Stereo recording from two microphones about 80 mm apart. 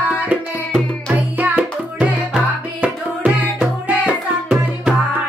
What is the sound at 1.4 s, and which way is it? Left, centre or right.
Music, centre.